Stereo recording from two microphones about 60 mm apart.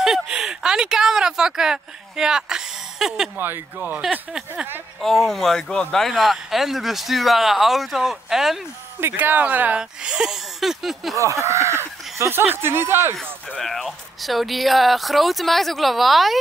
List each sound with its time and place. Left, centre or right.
0.0 s speech: centre
3.3 s speech: right
4.3 s speech: centre
5.0 s speech: centre
9.1 s speech: right
9.8 s speech: centre
11.1 s speech: right
13.6 s speech: centre